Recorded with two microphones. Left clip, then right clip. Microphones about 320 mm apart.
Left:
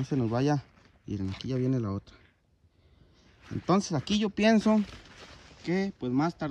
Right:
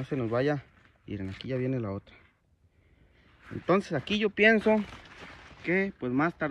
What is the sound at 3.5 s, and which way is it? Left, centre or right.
Speech, centre.